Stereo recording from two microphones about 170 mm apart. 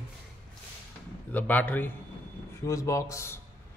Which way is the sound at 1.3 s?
10° left (ahead or behind).